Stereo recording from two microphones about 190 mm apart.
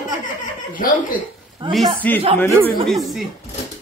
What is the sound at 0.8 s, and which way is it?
Speech, 50° left (ahead or behind).